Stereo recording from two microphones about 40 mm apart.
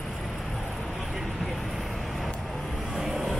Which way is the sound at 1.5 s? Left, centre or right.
Centre.